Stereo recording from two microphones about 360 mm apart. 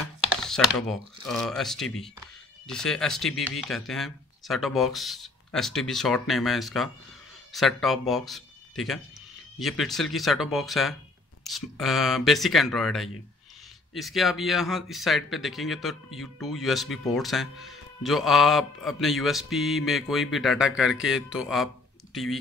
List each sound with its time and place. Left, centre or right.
0.4 s speech: centre